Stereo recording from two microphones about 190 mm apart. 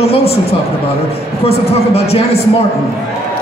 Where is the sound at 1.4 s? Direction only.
35° left (ahead or behind).